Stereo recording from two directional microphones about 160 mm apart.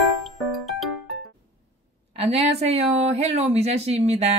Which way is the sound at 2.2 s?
40° right (ahead or behind).